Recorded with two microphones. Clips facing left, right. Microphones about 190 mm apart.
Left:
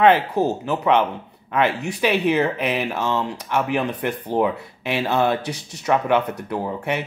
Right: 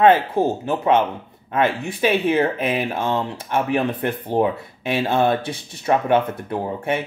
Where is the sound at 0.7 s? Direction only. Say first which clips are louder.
Right 1 dB; 50° right (ahead or behind).